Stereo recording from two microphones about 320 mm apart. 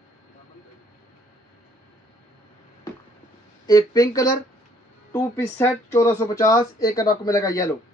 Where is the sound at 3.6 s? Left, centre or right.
Centre.